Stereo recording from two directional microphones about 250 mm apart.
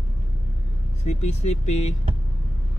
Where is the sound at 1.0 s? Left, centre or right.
Left.